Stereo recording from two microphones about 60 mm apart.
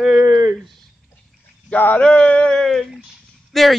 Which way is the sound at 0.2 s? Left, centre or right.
Right.